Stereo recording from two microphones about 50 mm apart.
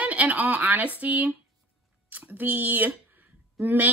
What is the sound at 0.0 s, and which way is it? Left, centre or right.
A woman's voice, right.